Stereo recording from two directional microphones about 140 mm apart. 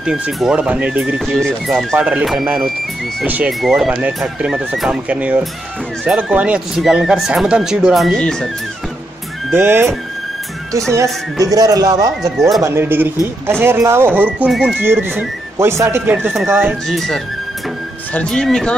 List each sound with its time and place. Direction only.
0.0 s speech: 5° right (ahead or behind)
9.5 s speech: 15° right (ahead or behind)
11.3 s speech: 25° right (ahead or behind)
12.2 s speech: centre (ahead or behind)
12.6 s speech: 15° right (ahead or behind)
14.5 s speech: centre (ahead or behind)
14.8 s speech: 15° right (ahead or behind)
16.8 s speech: 5° left (ahead or behind)